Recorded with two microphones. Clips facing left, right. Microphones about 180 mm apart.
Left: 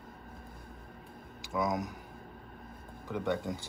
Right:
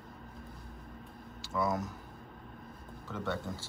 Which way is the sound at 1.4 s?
15° left (ahead or behind).